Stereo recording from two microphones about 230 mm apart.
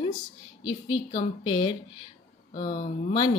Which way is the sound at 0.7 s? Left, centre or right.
Left.